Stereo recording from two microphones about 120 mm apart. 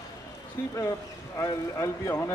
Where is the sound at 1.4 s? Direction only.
25° left (ahead or behind).